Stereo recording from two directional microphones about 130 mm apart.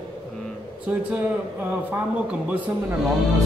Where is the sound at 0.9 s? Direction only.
10° right (ahead or behind).